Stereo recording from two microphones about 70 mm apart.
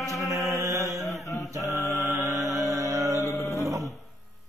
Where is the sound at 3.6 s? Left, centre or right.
Right.